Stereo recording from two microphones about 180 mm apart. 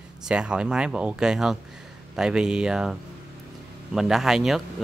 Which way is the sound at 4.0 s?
Centre (ahead or behind).